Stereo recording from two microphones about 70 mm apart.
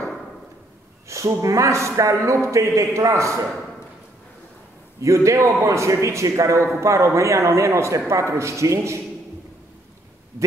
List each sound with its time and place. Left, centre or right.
1.0 s speech: right
5.0 s speech: right